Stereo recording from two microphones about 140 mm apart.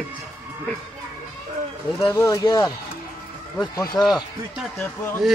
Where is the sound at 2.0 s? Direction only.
20° left (ahead or behind).